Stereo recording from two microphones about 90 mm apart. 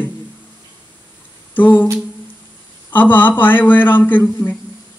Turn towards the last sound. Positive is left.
turn(degrees=20)  # may be behind; listen again after turning